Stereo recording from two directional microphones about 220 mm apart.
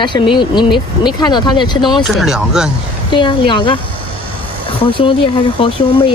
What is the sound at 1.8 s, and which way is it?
Speech, centre (ahead or behind).